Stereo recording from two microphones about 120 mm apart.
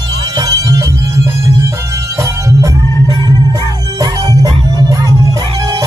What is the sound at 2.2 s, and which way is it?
Music, 25° right (ahead or behind).